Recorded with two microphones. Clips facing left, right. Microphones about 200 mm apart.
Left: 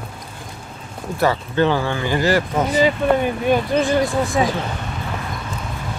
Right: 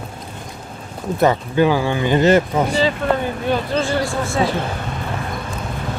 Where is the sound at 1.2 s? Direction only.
15° right (ahead or behind).